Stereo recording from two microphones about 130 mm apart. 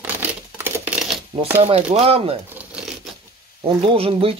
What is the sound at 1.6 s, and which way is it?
Speech, 50° right (ahead or behind).